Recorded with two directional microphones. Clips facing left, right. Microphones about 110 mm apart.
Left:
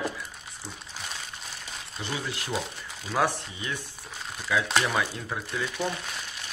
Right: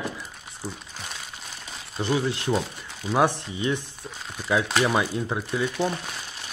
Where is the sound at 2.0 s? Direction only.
30° right (ahead or behind).